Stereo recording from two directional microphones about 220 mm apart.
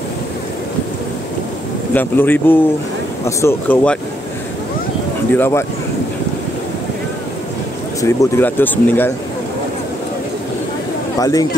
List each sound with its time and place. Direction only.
2.0 s speech: 10° left (ahead or behind)
5.3 s speech: 10° left (ahead or behind)
8.0 s speech: 10° left (ahead or behind)
11.1 s speech: 15° left (ahead or behind)